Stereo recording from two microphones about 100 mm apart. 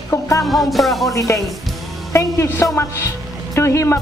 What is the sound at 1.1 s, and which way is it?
A woman's voice, 30° left (ahead or behind).